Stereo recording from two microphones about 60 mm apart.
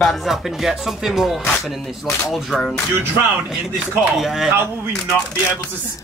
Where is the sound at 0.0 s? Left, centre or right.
Centre.